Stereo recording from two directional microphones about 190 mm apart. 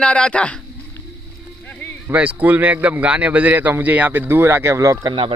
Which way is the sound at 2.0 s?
10° right (ahead or behind).